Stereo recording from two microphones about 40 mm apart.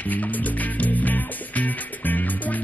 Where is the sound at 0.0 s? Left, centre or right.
Left.